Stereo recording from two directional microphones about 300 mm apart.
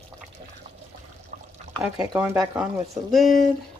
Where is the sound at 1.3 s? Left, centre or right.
Right.